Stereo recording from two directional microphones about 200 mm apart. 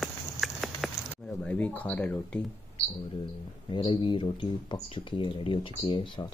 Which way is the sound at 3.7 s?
25° left (ahead or behind).